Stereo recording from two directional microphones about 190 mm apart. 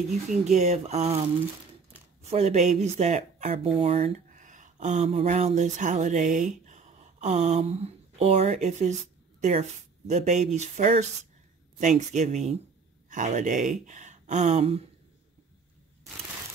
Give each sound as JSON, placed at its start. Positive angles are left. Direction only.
{"t": 0.5, "sound": "speech", "side_deg": -35}
{"t": 2.2, "sound": "speech", "side_deg": -35}
{"t": 13.8, "sound": "gasp", "side_deg": -40}